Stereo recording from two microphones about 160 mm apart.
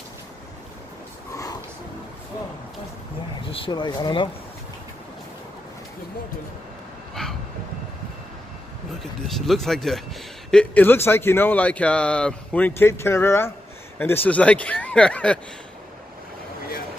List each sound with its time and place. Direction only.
1.3 s a sound: 20° left (ahead or behind)
3.5 s speech: 30° left (ahead or behind)
7.2 s vehicle: 5° left (ahead or behind)
9.3 s speech: centre (ahead or behind)